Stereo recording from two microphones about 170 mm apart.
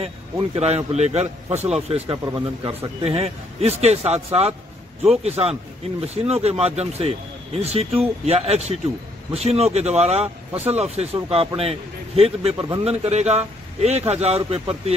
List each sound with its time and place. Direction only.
0.6 s speech: 40° right (ahead or behind)
2.2 s speech: 25° right (ahead or behind)
3.0 s speech: 40° right (ahead or behind)